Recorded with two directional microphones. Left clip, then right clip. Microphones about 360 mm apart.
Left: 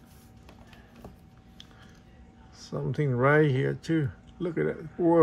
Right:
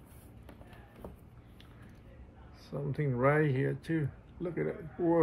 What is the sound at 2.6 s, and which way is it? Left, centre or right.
Speech, left.